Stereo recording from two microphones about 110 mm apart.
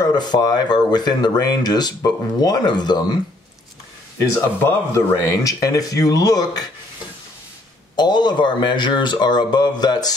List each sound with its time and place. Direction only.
0.0 s speech: 40° left (ahead or behind)
4.3 s speech: 25° left (ahead or behind)
7.9 s speech: 40° left (ahead or behind)